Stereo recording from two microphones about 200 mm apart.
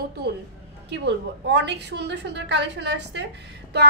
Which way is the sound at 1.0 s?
60° right (ahead or behind).